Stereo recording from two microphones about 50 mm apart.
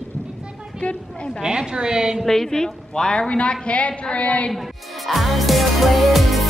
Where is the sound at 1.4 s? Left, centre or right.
Centre.